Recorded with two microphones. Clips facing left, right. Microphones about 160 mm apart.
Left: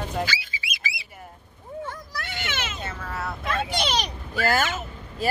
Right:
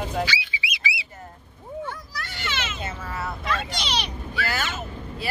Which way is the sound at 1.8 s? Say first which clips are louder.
Even; 55° left (ahead or behind).